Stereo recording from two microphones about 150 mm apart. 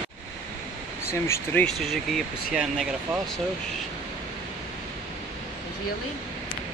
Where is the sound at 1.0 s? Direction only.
20° left (ahead or behind).